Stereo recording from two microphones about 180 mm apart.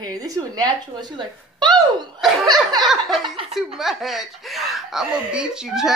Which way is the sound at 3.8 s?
Centre (ahead or behind).